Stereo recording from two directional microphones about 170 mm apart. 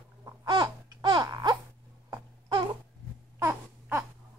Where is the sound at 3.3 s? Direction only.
15° right (ahead or behind).